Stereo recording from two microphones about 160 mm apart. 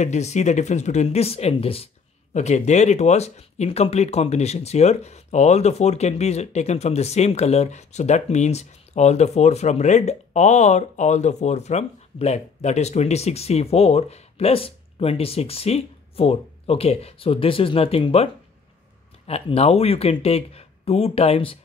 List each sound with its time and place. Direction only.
0.0 s speech: 45° left (ahead or behind)